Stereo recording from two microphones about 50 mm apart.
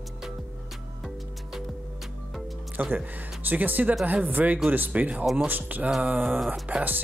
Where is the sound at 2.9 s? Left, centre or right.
Right.